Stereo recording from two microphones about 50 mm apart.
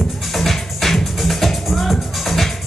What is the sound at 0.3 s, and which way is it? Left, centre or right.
Music, centre.